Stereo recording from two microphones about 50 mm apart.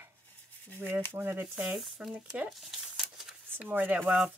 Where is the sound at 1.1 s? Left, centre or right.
Right.